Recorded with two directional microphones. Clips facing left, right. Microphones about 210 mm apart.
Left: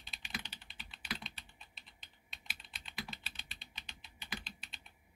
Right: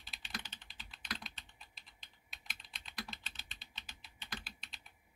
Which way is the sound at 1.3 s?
5° left (ahead or behind).